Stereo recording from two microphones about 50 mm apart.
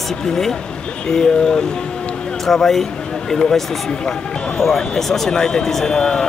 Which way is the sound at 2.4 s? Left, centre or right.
Centre.